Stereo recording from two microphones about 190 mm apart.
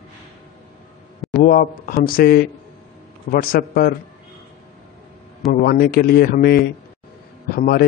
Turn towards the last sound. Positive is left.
turn(degrees=50)  # may be behind; listen again after turning